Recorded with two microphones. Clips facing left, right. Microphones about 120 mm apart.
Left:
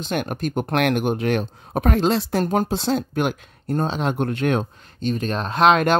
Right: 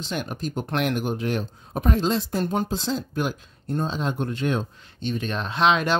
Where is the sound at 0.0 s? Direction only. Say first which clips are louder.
Left 5 dB; 55° left (ahead or behind).